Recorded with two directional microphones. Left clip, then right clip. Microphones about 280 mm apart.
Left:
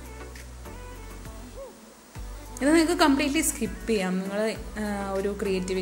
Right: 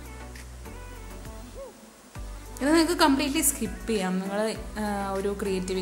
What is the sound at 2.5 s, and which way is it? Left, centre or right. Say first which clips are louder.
A woman's voice: left 1 dB; centre.